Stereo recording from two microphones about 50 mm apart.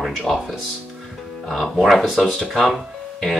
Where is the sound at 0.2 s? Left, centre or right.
Centre.